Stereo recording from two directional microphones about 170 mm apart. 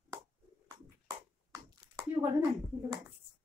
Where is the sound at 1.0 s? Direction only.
20° right (ahead or behind).